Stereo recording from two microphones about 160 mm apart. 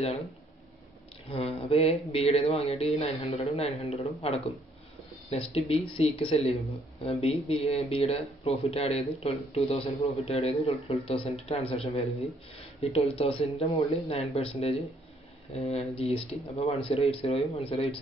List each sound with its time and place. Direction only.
1.3 s speech: 40° left (ahead or behind)